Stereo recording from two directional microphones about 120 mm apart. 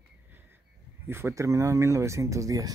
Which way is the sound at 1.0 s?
20° right (ahead or behind).